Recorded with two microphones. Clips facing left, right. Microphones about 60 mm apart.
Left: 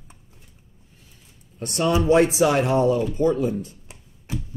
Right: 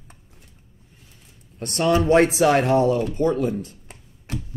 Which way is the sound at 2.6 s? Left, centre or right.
Centre.